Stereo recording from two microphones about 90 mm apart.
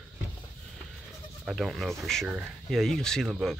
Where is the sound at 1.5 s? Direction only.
Centre (ahead or behind).